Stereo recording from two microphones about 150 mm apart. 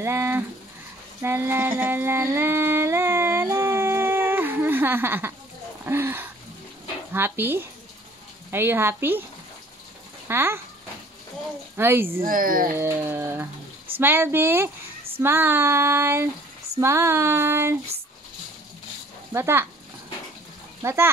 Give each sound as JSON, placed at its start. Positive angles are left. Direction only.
{"t": 0.0, "sound": "female singing", "side_deg": -15}
{"t": 1.8, "sound": "a sound", "side_deg": -15}
{"t": 5.9, "sound": "speech", "side_deg": -15}
{"t": 7.2, "sound": "female singing", "side_deg": -15}
{"t": 10.2, "sound": "speech", "side_deg": -15}
{"t": 11.7, "sound": "female singing", "side_deg": -15}
{"t": 12.3, "sound": "speech", "side_deg": -70}
{"t": 12.7, "sound": "female singing", "side_deg": -15}
{"t": 19.3, "sound": "female singing", "side_deg": -15}
{"t": 20.8, "sound": "female singing", "side_deg": -15}